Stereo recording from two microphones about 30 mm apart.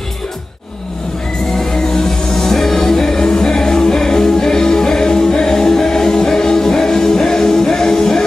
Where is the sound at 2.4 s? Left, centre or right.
Centre.